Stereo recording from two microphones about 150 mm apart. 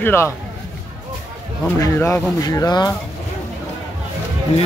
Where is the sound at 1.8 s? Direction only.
20° left (ahead or behind).